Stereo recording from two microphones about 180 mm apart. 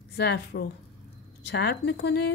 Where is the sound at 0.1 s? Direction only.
70° left (ahead or behind).